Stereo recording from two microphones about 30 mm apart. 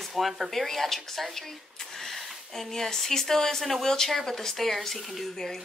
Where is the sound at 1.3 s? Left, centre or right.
Centre.